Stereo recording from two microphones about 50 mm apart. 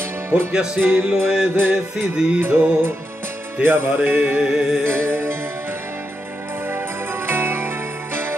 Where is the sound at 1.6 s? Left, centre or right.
Right.